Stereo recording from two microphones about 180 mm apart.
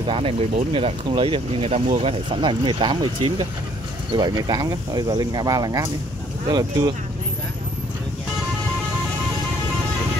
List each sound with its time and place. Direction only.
0.0 s speech: 30° right (ahead or behind)